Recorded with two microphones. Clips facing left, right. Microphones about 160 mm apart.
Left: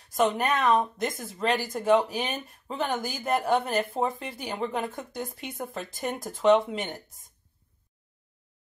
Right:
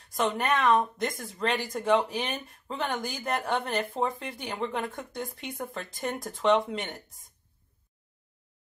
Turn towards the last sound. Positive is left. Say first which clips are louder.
# left 2 dB
turn(degrees=0)  # may be behind; listen again after turning